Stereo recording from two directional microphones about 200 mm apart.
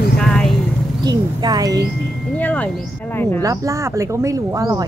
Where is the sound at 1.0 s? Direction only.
20° right (ahead or behind).